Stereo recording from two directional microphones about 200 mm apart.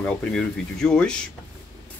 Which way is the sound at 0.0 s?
5° left (ahead or behind).